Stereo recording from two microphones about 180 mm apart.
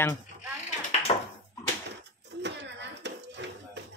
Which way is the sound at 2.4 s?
75° right (ahead or behind).